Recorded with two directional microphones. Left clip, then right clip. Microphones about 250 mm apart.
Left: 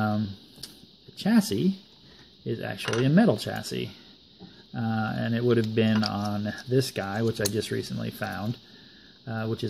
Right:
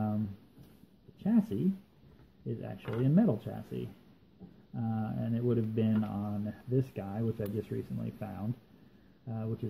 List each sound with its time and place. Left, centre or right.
1.1 s speech: left
6.0 s speech: left
6.4 s speech: left